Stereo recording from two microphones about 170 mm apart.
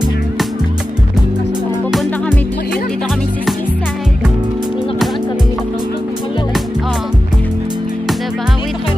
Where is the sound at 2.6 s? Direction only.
60° left (ahead or behind).